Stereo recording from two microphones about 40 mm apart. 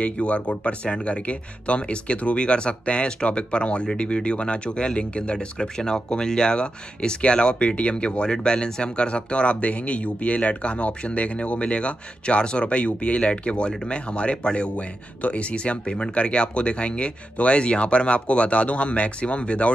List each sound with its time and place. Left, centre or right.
0.0 s speech: left